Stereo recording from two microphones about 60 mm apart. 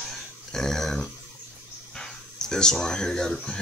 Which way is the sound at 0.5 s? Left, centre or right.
Centre.